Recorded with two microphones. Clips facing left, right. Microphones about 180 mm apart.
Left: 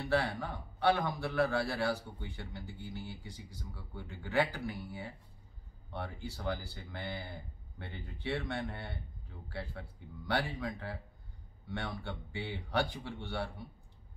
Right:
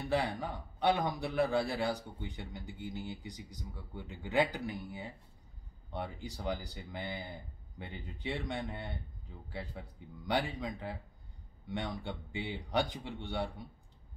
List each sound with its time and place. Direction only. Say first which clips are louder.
0.1 s a man's voice: even; 15° right (ahead or behind)